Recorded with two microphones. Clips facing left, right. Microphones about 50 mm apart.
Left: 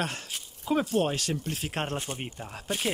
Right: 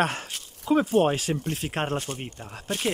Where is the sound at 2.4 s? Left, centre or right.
Centre.